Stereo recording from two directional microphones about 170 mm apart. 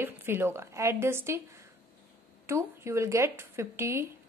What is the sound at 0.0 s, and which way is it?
Speech, 15° right (ahead or behind).